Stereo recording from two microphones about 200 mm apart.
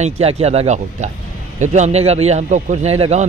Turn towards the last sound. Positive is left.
turn(degrees=-30)  # may be behind; listen again after turning